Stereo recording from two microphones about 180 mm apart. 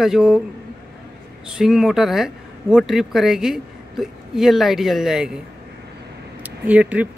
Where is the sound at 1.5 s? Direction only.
Centre (ahead or behind).